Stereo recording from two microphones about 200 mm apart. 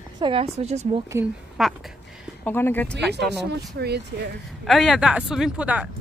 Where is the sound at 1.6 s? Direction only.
Centre (ahead or behind).